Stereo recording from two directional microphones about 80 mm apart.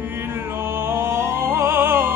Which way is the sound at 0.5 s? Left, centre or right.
Right.